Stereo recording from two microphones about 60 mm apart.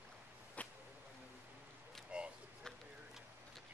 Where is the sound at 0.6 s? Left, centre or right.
Left.